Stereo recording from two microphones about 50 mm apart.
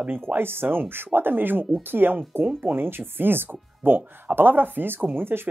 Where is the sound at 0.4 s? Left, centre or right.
Right.